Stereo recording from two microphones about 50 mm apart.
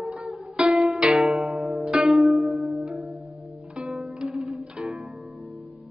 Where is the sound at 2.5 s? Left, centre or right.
Centre.